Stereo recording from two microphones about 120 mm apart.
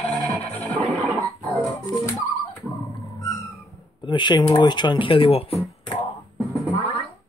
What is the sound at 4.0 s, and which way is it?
Speech, 40° left (ahead or behind).